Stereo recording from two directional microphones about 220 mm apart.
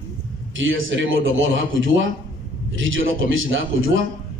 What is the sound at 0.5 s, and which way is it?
A man's voice, 60° right (ahead or behind).